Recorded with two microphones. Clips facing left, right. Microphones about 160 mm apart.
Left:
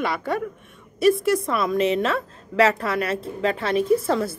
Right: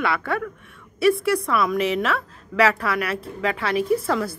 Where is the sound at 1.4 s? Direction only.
25° left (ahead or behind).